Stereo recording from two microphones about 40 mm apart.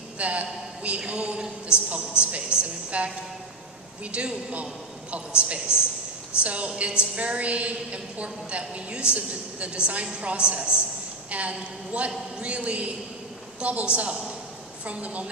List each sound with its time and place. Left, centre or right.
0.2 s a woman's voice: right
6.4 s a woman's voice: right
14.9 s a woman's voice: right